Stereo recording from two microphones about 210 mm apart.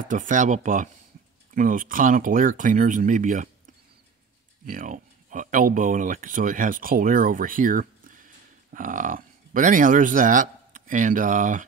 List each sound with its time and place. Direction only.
0.0 s speech: 40° right (ahead or behind)